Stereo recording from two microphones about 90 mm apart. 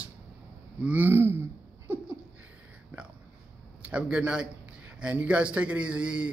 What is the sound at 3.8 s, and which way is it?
Speech, 10° right (ahead or behind).